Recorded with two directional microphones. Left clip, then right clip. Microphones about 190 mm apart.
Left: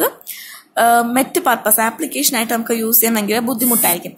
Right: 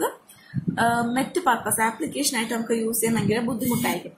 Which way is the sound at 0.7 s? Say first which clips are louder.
Left 10 dB; 60° left (ahead or behind).